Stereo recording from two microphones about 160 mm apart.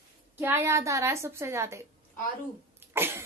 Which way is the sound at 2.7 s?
15° right (ahead or behind).